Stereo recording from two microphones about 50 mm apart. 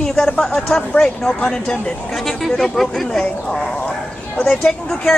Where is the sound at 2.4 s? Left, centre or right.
Centre.